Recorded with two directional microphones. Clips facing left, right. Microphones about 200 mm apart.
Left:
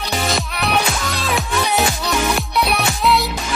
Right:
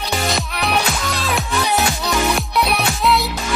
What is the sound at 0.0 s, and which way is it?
Music, centre (ahead or behind).